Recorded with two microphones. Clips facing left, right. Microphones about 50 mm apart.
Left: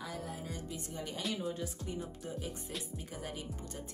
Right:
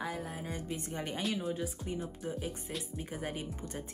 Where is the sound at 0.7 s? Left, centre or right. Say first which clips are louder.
Right 3 dB; right.